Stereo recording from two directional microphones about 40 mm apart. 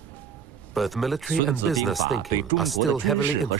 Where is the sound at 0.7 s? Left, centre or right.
Centre.